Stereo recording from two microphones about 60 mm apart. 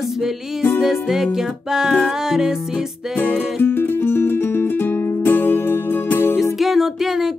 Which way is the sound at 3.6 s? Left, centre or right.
Left.